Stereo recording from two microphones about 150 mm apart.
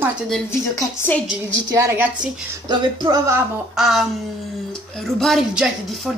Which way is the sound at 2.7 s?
30° right (ahead or behind).